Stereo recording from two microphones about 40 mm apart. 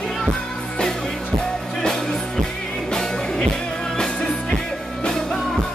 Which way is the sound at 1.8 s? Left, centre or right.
Centre.